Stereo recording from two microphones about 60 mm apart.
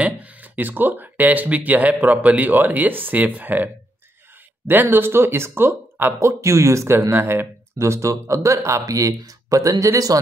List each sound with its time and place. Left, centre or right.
0.0 s speech: right
6.1 s speech: right
7.1 s speech: right
7.8 s speech: right